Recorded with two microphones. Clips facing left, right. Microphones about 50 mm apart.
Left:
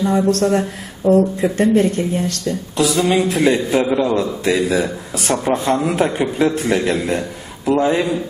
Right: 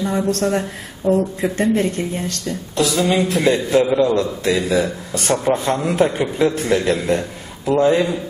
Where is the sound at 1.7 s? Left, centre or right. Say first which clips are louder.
Left 4 dB; right.